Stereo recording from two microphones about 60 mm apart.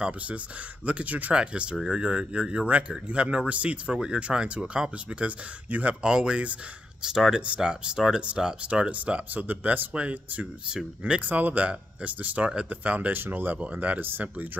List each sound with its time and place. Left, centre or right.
0.8 s speech: right